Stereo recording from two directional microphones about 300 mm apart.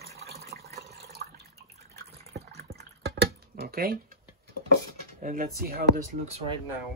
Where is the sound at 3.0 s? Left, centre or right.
Right.